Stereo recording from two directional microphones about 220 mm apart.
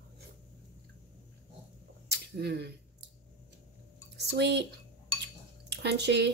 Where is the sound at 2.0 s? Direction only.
50° right (ahead or behind).